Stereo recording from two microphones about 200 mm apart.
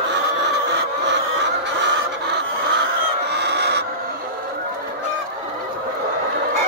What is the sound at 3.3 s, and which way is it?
Chicken, 55° right (ahead or behind).